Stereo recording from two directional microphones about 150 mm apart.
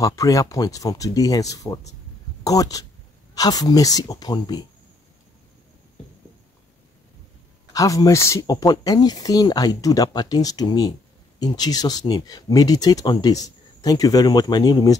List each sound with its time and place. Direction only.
0.0 s speech: 20° left (ahead or behind)
7.7 s speech: 25° left (ahead or behind)